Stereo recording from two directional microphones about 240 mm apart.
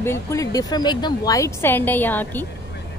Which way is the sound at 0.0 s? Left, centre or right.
Centre.